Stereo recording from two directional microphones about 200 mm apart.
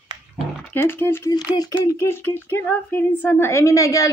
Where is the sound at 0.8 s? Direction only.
10° left (ahead or behind).